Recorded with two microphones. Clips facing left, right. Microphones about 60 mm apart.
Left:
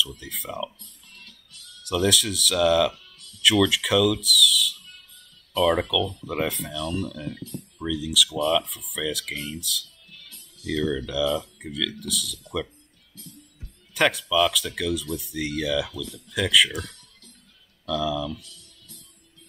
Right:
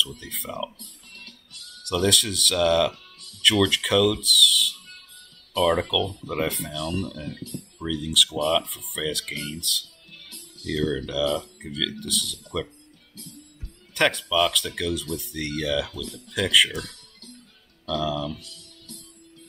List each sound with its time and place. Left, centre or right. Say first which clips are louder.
0.2 s speech: even; centre
0.7 s music: right 3 dB; right
1.9 s speech: even; centre
2.9 s music: right 2 dB; right
3.4 s speech: left 1 dB; centre
4.8 s music: right 2 dB; right
5.6 s speech: even; centre
6.7 s speech: even; right
7.8 s speech: even; centre
13.9 s speech: left 1 dB; centre
16.7 s music: even; right
17.8 s speech: even; centre
18.2 s music: even; right